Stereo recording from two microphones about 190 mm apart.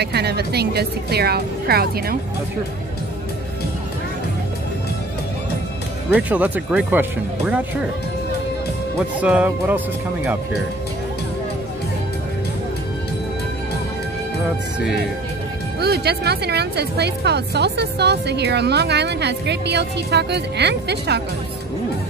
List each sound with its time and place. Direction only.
0.0 s a woman's voice: 60° right (ahead or behind)
6.0 s speech: 10° right (ahead or behind)
8.9 s speech: 5° right (ahead or behind)
15.8 s a woman's voice: 55° right (ahead or behind)